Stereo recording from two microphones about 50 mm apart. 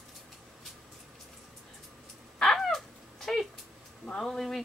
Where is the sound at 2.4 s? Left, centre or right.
Centre.